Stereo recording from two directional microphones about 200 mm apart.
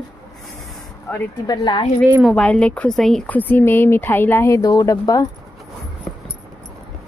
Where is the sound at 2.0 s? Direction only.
10° right (ahead or behind).